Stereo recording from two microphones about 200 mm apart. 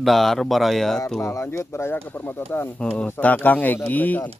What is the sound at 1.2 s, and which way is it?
Speech, 15° left (ahead or behind).